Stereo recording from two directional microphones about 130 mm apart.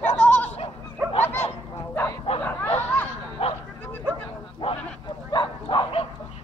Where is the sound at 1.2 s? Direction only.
15° left (ahead or behind).